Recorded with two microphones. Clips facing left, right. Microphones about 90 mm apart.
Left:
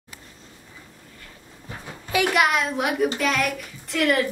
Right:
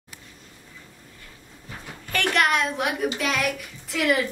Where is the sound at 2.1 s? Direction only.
5° left (ahead or behind).